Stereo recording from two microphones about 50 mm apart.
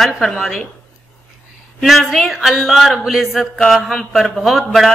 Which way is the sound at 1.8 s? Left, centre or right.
Centre.